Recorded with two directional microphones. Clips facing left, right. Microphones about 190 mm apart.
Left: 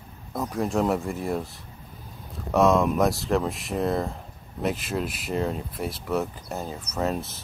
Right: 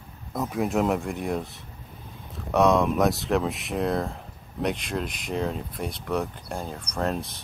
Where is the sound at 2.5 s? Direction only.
Centre (ahead or behind).